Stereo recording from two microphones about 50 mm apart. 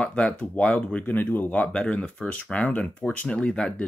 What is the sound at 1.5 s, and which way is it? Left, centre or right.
Speech, left.